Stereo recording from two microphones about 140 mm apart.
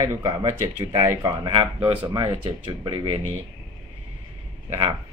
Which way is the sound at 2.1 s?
35° right (ahead or behind).